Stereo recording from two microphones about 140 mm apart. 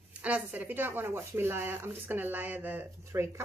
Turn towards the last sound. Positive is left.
turn(degrees=-20)  # may be behind; listen again after turning